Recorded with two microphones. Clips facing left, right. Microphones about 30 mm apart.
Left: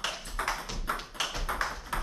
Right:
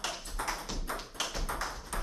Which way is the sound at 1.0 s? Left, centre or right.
Left.